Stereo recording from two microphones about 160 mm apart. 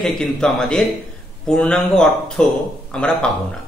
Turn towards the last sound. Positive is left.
turn(degrees=5)  # may be behind; listen again after turning